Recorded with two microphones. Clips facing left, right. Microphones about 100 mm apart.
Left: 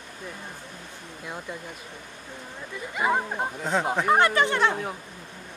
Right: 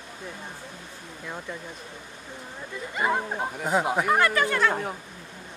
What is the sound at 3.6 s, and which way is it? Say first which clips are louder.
Speech: right 2 dB; 10° right (ahead or behind).